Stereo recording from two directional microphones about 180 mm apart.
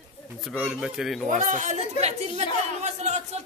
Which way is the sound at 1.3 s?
45° right (ahead or behind).